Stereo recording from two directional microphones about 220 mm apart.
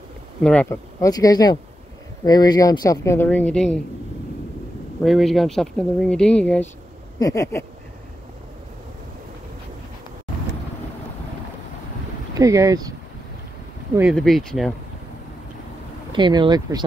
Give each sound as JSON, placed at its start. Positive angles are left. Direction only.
{"t": 0.4, "sound": "speech", "side_deg": 5}
{"t": 5.0, "sound": "speech", "side_deg": 0}
{"t": 12.4, "sound": "speech", "side_deg": -15}
{"t": 13.9, "sound": "speech", "side_deg": 0}
{"t": 16.1, "sound": "speech", "side_deg": -20}